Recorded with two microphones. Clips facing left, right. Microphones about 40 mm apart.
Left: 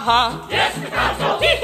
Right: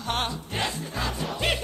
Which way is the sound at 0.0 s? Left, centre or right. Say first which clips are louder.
Left 12 dB; left.